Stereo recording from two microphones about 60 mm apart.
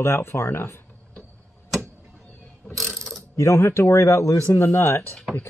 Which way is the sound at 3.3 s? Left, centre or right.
Left.